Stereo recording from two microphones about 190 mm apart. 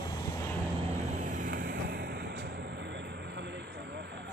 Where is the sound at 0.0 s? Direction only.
20° left (ahead or behind).